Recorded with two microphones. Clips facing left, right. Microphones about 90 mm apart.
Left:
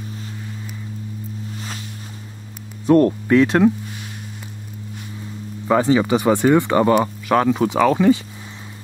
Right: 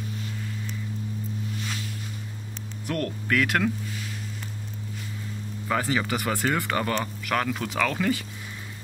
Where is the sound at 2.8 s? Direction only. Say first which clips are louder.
Left 15 dB; 25° left (ahead or behind).